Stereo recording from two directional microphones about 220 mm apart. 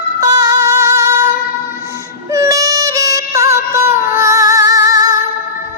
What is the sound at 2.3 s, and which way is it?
Music, 15° right (ahead or behind).